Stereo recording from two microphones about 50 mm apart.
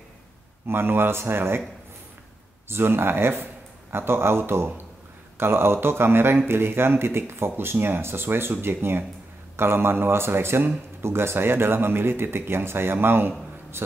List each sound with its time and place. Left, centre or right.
0.7 s speech: right
2.7 s speech: right